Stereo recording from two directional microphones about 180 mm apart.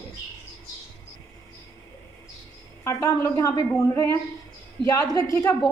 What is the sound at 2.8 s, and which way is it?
A woman's voice, 15° left (ahead or behind).